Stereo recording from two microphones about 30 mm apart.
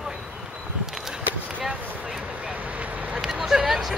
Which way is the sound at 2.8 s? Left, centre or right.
Right.